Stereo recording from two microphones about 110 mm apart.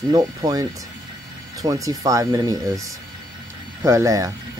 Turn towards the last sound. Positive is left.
turn(degrees=-30)  # may be behind; listen again after turning